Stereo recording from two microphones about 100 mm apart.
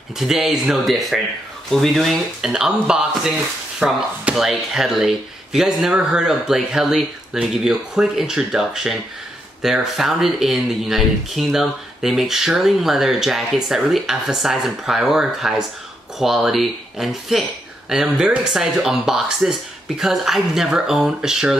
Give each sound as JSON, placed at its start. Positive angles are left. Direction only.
{"t": 0.2, "sound": "speech", "side_deg": -5}